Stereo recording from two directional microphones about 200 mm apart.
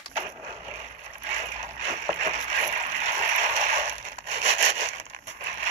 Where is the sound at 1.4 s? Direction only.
15° right (ahead or behind).